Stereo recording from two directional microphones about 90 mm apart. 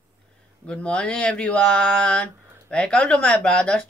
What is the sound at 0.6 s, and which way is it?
Speech, 15° left (ahead or behind).